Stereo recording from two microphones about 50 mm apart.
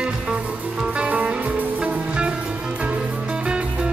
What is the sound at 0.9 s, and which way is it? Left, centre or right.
Music, right.